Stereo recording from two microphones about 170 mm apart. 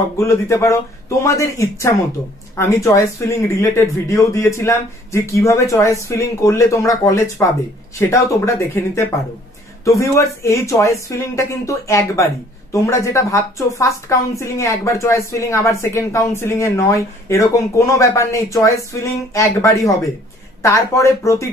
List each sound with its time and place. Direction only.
0.2 s a woman's voice: 15° left (ahead or behind)